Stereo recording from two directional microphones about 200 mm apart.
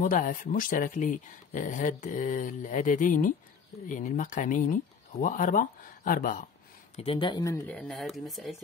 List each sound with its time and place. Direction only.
0.0 s speech: 40° left (ahead or behind)
7.0 s speech: 25° left (ahead or behind); by 8.5 s centre (ahead or behind)